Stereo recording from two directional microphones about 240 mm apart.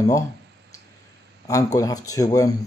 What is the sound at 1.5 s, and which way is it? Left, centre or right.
Speech, centre.